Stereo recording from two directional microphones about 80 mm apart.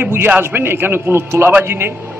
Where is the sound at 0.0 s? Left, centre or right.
Right.